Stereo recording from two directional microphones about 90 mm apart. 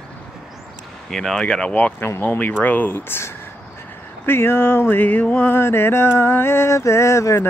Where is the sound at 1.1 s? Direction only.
5° left (ahead or behind).